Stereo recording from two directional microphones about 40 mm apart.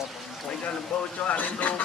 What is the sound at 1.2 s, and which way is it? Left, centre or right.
Speech, left.